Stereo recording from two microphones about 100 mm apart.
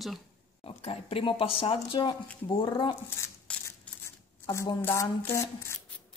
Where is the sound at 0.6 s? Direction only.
70° left (ahead or behind).